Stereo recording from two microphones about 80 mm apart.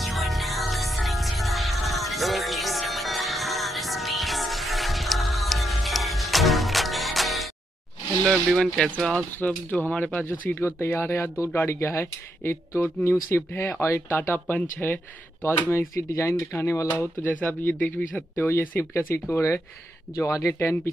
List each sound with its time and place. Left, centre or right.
0.0 s music: centre
8.2 s speech: centre
9.4 s speech: left
17.0 s speech: left